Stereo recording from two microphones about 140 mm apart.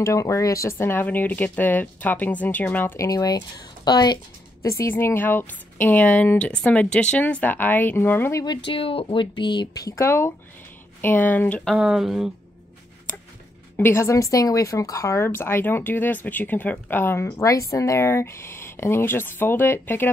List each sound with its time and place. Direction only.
0.0 s a woman's voice: 20° left (ahead or behind)
3.1 s a woman's voice: 25° left (ahead or behind)
4.6 s a woman's voice: 20° left (ahead or behind)
8.5 s a woman's voice: 40° left (ahead or behind); by 11.7 s 10° left (ahead or behind)
11.7 s speech: 5° right (ahead or behind)
13.7 s a woman's voice: 15° left (ahead or behind)